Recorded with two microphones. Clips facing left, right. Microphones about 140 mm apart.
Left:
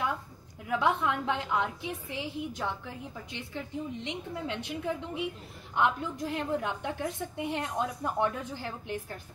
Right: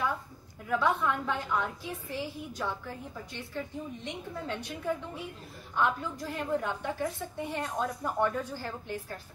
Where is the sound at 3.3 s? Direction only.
20° left (ahead or behind).